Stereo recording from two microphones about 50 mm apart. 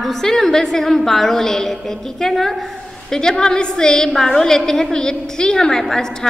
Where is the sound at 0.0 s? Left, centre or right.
Centre.